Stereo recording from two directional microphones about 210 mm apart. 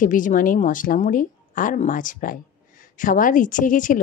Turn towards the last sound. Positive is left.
turn(degrees=40)  # may be behind; listen again after turning